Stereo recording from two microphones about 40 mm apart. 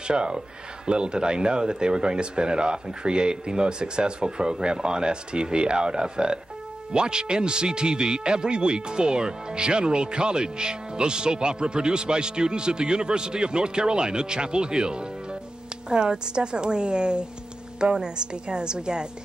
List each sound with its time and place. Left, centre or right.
0.1 s speech: right